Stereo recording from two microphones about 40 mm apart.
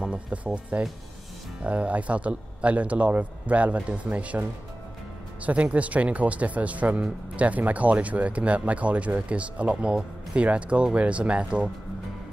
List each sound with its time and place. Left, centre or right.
0.0 s speech: right